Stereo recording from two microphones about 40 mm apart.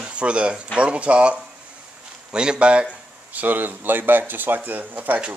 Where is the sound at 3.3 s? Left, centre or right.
Right.